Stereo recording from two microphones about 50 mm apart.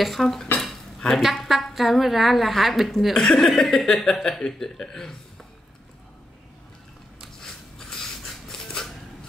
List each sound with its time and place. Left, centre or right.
0.0 s a woman's voice: centre
0.6 s dishes: centre
1.2 s a woman's voice: centre
8.0 s a sound: centre